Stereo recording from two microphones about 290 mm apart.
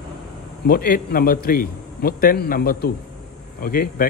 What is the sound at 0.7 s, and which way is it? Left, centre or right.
A man's voice, left.